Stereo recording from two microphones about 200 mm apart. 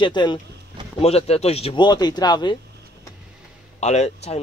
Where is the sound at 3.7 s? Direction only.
35° left (ahead or behind).